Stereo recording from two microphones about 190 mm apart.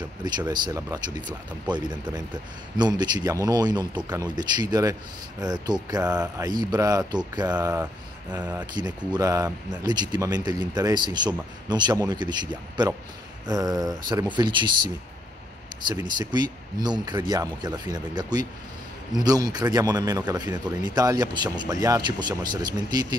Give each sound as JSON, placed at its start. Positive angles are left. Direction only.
{"t": 0.2, "sound": "a man's voice", "side_deg": -20}
{"t": 8.3, "sound": "speech", "side_deg": -10}
{"t": 8.7, "sound": "a man's voice", "side_deg": -20}
{"t": 16.2, "sound": "a man's voice", "side_deg": -20}